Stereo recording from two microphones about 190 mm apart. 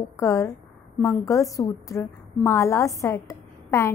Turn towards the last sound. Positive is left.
turn(degrees=15)  # may be behind; listen again after turning